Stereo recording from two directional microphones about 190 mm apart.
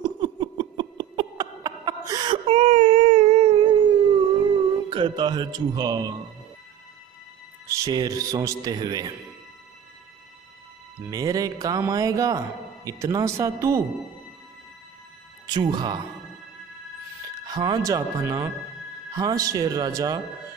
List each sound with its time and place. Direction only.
0.2 s a sound: 25° right (ahead or behind)
4.8 s speech: 25° right (ahead or behind)
7.6 s speech: 15° right (ahead or behind)
11.1 s speech: 20° right (ahead or behind)
15.5 s speech: 25° right (ahead or behind)
17.5 s speech: 20° right (ahead or behind)